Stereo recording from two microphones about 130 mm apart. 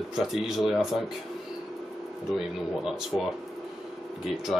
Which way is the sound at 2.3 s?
5° right (ahead or behind).